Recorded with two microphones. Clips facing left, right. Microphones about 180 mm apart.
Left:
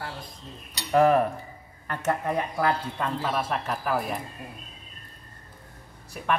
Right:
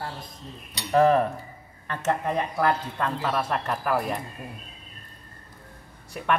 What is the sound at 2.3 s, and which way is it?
Speech, 10° left (ahead or behind).